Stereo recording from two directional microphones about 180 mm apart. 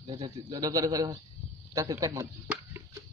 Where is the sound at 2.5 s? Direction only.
15° right (ahead or behind).